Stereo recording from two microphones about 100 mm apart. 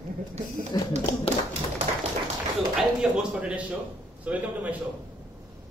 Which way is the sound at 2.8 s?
5° right (ahead or behind).